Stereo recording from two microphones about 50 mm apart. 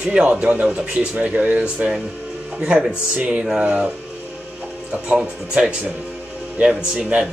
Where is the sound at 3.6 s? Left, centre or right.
Right.